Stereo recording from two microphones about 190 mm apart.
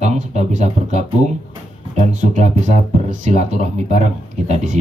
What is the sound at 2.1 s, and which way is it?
Speech, 40° right (ahead or behind).